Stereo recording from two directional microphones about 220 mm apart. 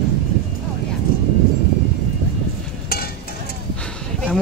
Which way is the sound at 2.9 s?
45° left (ahead or behind).